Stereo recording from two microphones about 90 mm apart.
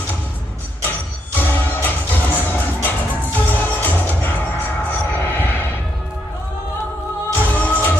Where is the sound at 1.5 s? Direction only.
20° left (ahead or behind).